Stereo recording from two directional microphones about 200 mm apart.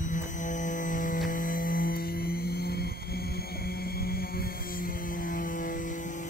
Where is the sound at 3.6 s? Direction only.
50° left (ahead or behind).